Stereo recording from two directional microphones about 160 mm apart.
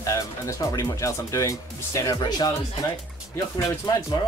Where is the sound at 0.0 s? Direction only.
20° left (ahead or behind).